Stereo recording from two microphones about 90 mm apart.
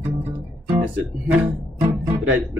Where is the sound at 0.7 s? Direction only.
20° right (ahead or behind).